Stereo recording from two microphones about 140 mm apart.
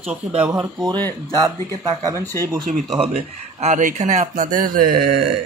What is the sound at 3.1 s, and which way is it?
Speech, 50° right (ahead or behind).